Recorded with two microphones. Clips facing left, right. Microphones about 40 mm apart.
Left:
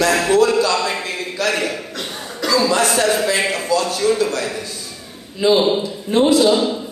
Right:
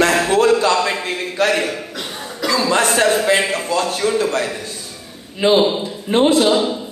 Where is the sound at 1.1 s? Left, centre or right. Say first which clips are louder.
Right 3 dB; right.